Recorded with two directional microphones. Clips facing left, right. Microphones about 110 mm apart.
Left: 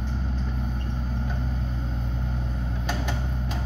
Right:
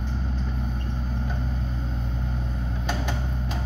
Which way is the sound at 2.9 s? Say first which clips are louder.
Right 1 dB; 20° right (ahead or behind).